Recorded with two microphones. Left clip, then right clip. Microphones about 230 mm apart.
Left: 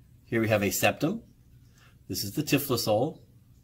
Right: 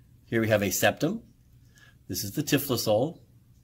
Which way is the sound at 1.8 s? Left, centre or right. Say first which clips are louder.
Even; centre.